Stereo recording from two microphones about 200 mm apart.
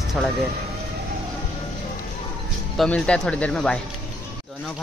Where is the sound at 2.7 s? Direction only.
5° left (ahead or behind).